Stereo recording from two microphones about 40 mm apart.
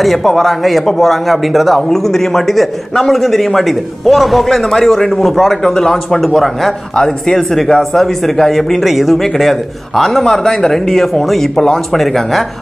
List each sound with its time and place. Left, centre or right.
0.0 s a man's voice: centre
5.3 s speech: centre
5.6 s a man's voice: centre
6.2 s a man's voice: centre